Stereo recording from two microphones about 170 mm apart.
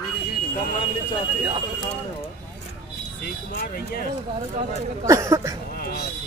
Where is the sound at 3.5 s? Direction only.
65° left (ahead or behind).